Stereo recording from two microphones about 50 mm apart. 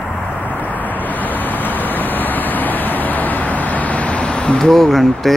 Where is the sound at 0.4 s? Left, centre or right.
Left.